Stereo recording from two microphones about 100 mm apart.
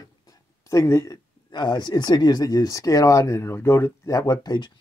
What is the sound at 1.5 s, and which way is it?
Speech, 50° left (ahead or behind).